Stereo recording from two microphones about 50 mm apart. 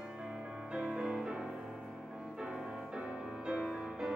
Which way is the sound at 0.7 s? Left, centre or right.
Centre.